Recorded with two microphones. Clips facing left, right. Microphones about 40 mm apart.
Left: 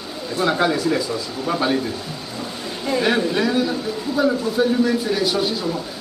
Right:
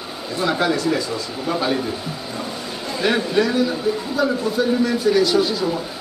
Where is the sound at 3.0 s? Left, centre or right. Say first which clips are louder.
Right 1 dB; centre.